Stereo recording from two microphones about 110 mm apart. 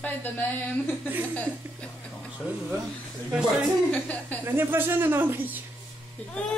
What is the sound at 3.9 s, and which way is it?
Speech, 15° left (ahead or behind).